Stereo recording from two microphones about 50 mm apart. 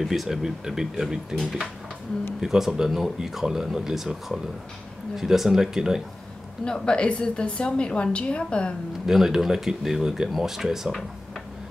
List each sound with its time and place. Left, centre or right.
0.0 s speech: centre
5.1 s speech: centre
6.6 s a woman's voice: centre
9.0 s speech: centre